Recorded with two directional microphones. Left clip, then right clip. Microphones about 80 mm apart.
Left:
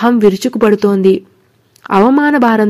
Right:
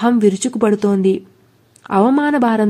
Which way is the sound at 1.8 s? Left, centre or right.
Left.